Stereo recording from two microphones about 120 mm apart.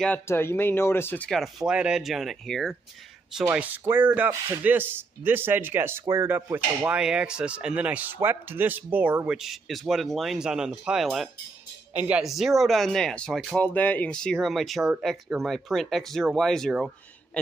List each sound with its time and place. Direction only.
0.3 s speech: 20° left (ahead or behind)
1.3 s speech: centre (ahead or behind)
3.4 s a man's voice: 15° right (ahead or behind)
7.0 s a man's voice: 5° right (ahead or behind)
13.7 s speech: 15° left (ahead or behind)